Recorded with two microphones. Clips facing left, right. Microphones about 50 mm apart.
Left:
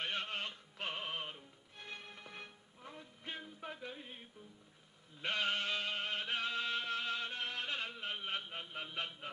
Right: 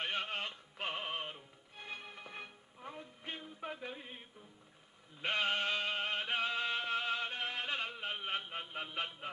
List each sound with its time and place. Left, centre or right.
0.0 s music: centre
5.2 s music: centre